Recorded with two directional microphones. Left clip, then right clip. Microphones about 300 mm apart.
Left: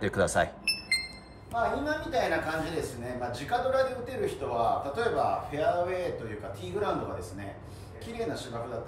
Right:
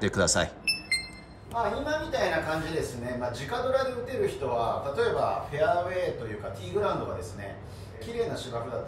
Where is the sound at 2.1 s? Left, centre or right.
Centre.